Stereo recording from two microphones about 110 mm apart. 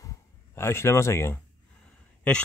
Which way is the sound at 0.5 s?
20° left (ahead or behind).